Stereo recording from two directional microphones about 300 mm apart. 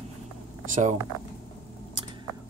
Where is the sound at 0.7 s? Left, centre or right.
Right.